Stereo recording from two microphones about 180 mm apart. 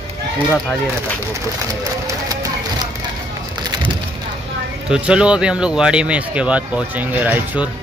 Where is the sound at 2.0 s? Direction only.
20° right (ahead or behind).